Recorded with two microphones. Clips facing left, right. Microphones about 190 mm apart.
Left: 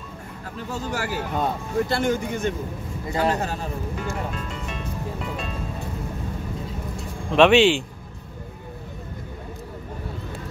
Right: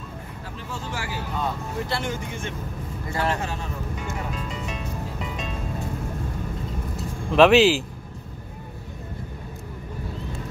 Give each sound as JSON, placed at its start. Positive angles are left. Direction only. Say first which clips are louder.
{"t": 0.7, "sound": "speech", "louder": "left 5 dB", "side_deg": 40}
{"t": 4.0, "sound": "music", "louder": "left 2 dB", "side_deg": -5}
{"t": 7.0, "sound": "vehicle", "louder": "even", "side_deg": 0}